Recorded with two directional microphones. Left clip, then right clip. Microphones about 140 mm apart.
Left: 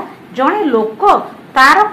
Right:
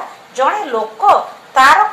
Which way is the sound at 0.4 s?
25° left (ahead or behind).